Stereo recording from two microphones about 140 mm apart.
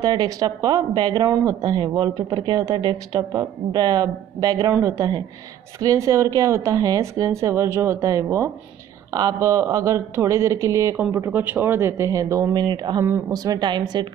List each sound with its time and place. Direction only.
0.0 s speech: 30° right (ahead or behind)